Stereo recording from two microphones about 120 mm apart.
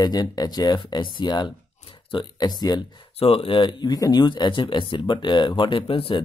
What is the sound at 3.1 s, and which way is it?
Speech, 50° left (ahead or behind).